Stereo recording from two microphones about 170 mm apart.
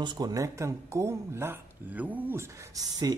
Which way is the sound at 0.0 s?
25° right (ahead or behind).